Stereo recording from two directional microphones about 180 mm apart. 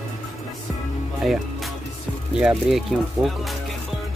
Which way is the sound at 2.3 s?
5° right (ahead or behind).